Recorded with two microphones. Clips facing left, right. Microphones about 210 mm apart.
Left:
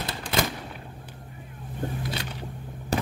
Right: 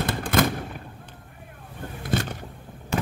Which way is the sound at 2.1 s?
45° right (ahead or behind).